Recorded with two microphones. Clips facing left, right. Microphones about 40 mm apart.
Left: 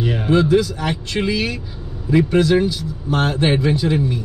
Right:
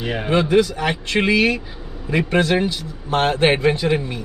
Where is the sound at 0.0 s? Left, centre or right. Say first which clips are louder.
Left 2 dB; centre.